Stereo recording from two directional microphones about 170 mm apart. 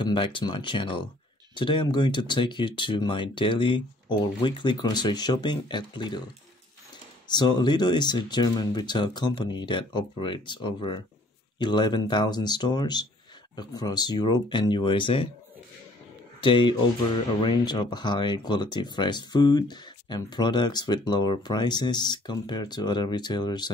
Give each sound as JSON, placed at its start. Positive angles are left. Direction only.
{"t": 0.0, "sound": "speech", "side_deg": 30}
{"t": 7.2, "sound": "speech", "side_deg": 25}
{"t": 16.3, "sound": "speech", "side_deg": 30}